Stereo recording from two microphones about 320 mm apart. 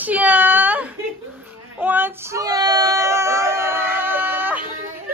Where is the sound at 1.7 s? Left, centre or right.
Centre.